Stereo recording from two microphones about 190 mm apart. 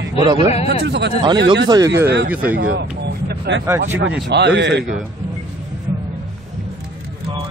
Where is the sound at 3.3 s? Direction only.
70° right (ahead or behind).